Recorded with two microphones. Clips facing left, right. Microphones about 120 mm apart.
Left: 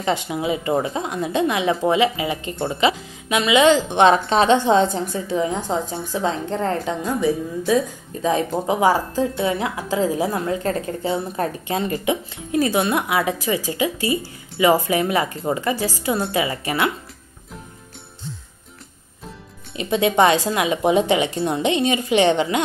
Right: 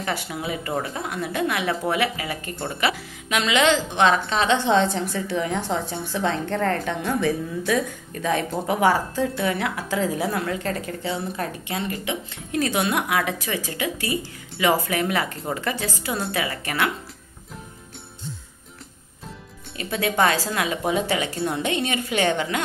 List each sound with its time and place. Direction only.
0.0 s a woman's voice: 20° left (ahead or behind)
4.6 s speech: 40° left (ahead or behind)
5.1 s a woman's voice: 20° left (ahead or behind)
6.9 s speech: 10° left (ahead or behind)
7.7 s a woman's voice: 30° left (ahead or behind)
8.6 s speech: 15° left (ahead or behind)
9.1 s a woman's voice: 30° left (ahead or behind)
12.1 s speech: 10° left (ahead or behind)
12.8 s speech: centre (ahead or behind)
13.2 s speech: 15° left (ahead or behind)
19.7 s a woman's voice: 20° left (ahead or behind)